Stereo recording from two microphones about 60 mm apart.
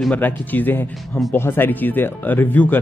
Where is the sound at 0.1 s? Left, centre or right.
Left.